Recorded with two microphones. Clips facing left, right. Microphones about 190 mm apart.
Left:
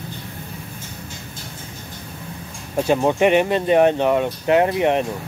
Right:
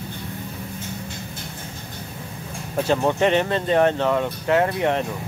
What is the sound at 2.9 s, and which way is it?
Speech, 15° left (ahead or behind).